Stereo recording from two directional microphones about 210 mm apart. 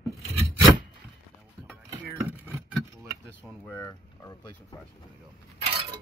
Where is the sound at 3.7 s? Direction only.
15° left (ahead or behind).